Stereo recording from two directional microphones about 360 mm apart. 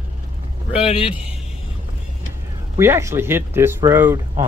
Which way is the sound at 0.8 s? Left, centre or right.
Centre.